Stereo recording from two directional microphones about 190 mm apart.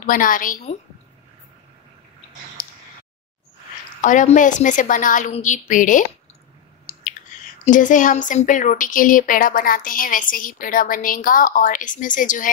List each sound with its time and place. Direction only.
0.0 s speech: 45° left (ahead or behind)
2.6 s a sound: 45° left (ahead or behind)
4.0 s speech: 40° left (ahead or behind)
7.6 s speech: 40° left (ahead or behind)